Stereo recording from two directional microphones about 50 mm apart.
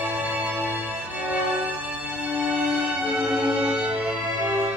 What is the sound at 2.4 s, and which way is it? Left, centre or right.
Music, right.